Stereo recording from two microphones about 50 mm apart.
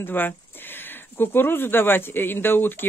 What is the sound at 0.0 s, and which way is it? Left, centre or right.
Speech, left.